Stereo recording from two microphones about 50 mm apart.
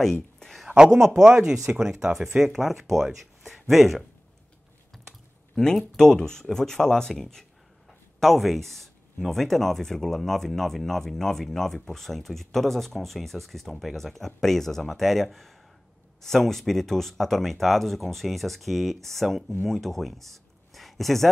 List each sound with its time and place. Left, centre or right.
0.0 s speech: centre
0.7 s speech: centre
5.6 s speech: centre